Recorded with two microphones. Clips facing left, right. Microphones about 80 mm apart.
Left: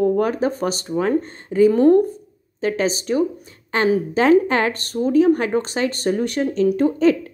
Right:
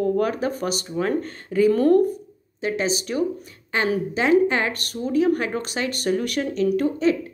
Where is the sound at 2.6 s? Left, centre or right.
Left.